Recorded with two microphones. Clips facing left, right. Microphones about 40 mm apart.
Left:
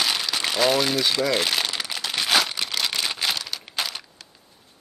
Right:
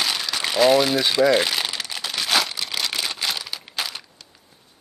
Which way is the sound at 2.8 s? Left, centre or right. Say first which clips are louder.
Even; centre.